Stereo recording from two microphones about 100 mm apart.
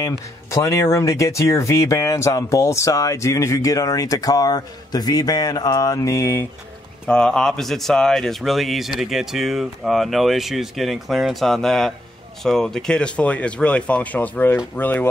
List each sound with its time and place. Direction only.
0.0 s speech: 30° left (ahead or behind)
7.1 s speech: 10° left (ahead or behind)